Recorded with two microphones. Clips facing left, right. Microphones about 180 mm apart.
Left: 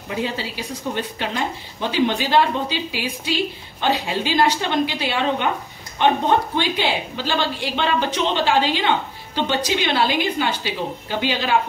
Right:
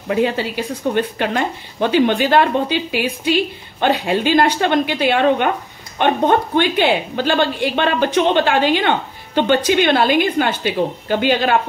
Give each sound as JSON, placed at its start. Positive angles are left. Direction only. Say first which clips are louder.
{"t": 0.1, "sound": "speech", "louder": "right 8 dB", "side_deg": -55}